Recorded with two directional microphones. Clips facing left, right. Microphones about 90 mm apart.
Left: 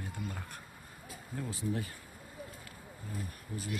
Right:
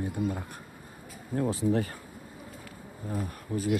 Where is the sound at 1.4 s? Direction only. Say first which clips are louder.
Right 10 dB; 90° right.